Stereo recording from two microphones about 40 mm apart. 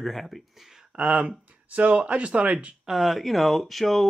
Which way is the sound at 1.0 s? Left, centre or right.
Right.